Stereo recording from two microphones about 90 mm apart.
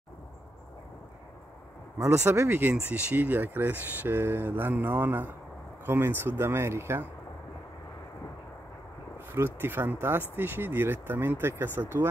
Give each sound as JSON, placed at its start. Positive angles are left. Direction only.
{"t": 2.0, "sound": "speech", "side_deg": -35}
{"t": 9.3, "sound": "speech", "side_deg": -25}